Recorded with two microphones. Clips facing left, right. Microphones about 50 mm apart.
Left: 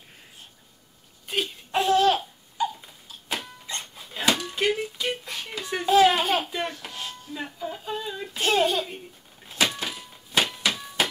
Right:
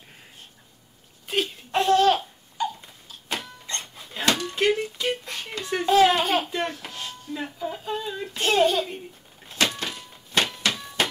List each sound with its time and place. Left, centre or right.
1.2 s laughter: centre